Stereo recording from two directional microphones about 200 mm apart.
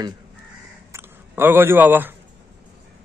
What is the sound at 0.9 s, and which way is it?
Speech, 10° right (ahead or behind).